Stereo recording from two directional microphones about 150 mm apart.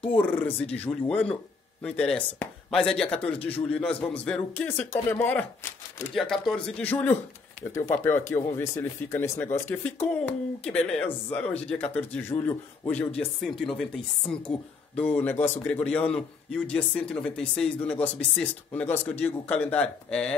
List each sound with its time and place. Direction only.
0.0 s a man's voice: 10° left (ahead or behind)
6.1 s a man's voice: centre (ahead or behind)